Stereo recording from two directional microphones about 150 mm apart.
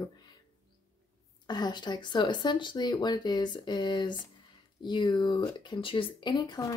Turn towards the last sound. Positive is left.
turn(degrees=25)  # may be behind; listen again after turning